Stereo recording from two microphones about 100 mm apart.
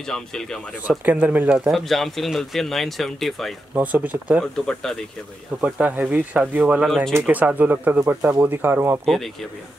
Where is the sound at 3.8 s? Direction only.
15° right (ahead or behind).